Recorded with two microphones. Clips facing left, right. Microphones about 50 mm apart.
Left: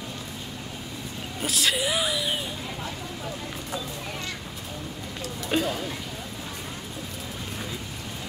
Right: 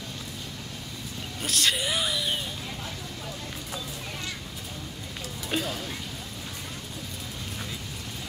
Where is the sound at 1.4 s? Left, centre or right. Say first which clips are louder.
Left 1 dB; centre.